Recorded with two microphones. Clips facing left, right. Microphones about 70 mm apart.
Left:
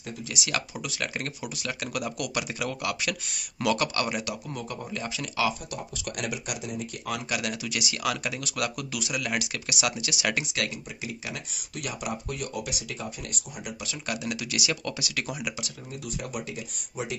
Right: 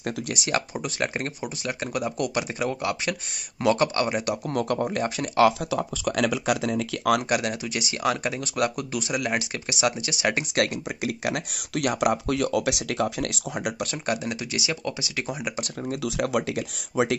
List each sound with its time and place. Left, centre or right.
0.3 s speech: right
4.3 s speech: right
6.8 s speech: right
7.2 s speech: right
7.6 s speech: right
10.5 s speech: right
14.0 s speech: right
14.5 s speech: right
16.0 s speech: right